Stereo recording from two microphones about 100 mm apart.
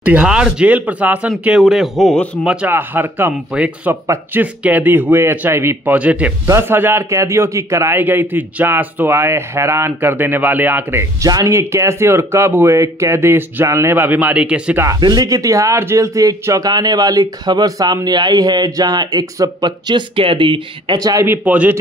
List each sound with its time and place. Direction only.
0.0 s speech: 15° right (ahead or behind)
1.6 s a man's voice: centre (ahead or behind)
2.4 s a man's voice: 10° right (ahead or behind)
6.4 s a man's voice: 25° right (ahead or behind)
11.2 s a man's voice: 35° right (ahead or behind); by 14.8 s 10° right (ahead or behind)
15.0 s speech: 45° right (ahead or behind)
20.2 s speech: 60° right (ahead or behind)
21.0 s speech: 40° right (ahead or behind)
21.3 s speech: 15° right (ahead or behind)